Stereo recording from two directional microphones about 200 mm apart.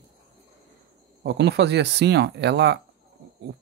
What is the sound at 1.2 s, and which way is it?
Speech, 55° right (ahead or behind).